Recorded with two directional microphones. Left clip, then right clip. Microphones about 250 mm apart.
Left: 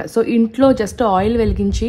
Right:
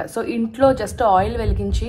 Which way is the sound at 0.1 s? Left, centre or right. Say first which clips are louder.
Left 8 dB; left.